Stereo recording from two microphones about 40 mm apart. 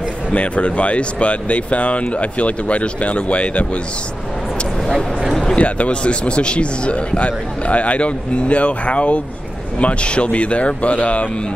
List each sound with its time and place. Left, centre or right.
0.3 s speech: left
5.3 s speech: centre
5.6 s speech: left